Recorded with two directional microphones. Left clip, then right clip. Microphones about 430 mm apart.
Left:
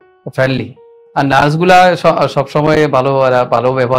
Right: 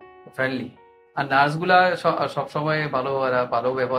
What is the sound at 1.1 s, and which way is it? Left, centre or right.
A man's voice, left.